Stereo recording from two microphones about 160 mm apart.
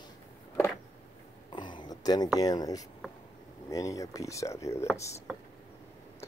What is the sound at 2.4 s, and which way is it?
Speech, 25° left (ahead or behind).